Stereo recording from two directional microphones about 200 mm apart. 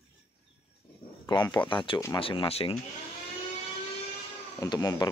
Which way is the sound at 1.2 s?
20° left (ahead or behind).